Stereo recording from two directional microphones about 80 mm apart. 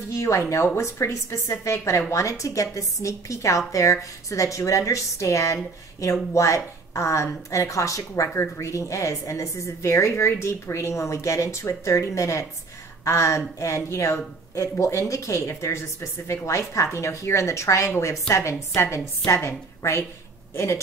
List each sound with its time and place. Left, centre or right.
0.1 s a woman's voice: left
8.3 s speech: left
8.6 s a woman's voice: left